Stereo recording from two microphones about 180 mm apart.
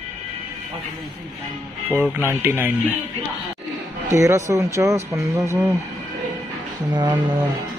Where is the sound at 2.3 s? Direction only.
10° right (ahead or behind).